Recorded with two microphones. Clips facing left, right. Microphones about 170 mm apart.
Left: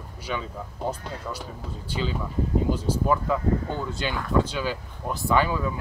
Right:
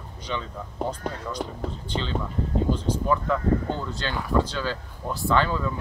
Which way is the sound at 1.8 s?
10° left (ahead or behind).